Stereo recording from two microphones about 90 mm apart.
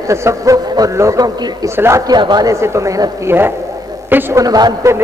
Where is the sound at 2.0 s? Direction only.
50° right (ahead or behind).